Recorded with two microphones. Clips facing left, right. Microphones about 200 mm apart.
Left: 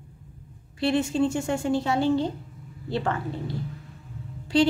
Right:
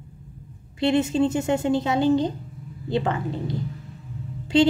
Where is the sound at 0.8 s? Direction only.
20° right (ahead or behind).